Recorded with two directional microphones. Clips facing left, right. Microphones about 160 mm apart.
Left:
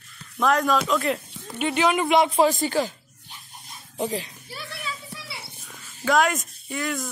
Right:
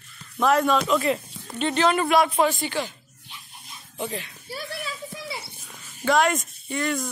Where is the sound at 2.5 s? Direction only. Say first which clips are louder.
Left 4 dB; 40° left (ahead or behind).